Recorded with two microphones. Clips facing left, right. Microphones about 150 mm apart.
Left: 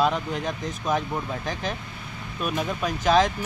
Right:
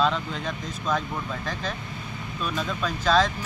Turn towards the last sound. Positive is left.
turn(degrees=15)  # may be behind; listen again after turning